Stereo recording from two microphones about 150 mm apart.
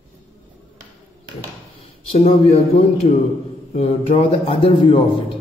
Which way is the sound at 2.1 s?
45° left (ahead or behind).